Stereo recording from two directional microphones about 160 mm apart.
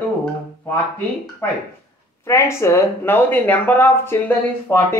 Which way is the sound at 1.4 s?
15° left (ahead or behind).